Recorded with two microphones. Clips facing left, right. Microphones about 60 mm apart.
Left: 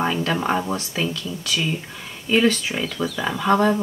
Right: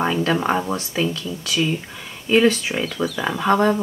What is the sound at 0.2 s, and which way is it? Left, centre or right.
Speech, centre.